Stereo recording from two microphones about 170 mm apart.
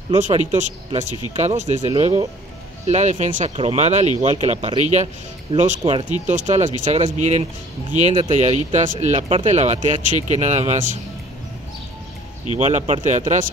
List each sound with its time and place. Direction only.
0.1 s speech: 40° right (ahead or behind)
12.5 s speech: 45° right (ahead or behind)